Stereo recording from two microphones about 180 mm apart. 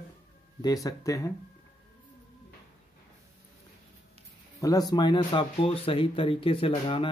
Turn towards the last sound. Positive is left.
turn(degrees=30)  # may be behind; listen again after turning